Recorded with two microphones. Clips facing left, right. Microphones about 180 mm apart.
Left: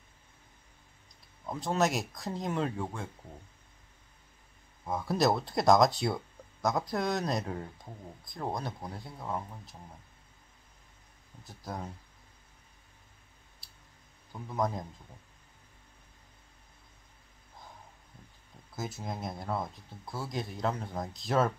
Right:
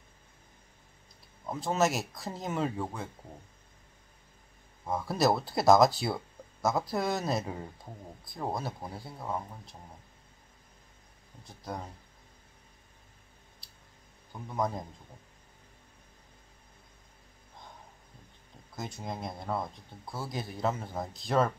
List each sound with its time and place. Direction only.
1.4 s speech: 5° right (ahead or behind)
4.8 s speech: centre (ahead or behind)
11.4 s speech: centre (ahead or behind)
13.6 s a sound: centre (ahead or behind)
14.3 s speech: centre (ahead or behind)
18.8 s speech: 5° left (ahead or behind)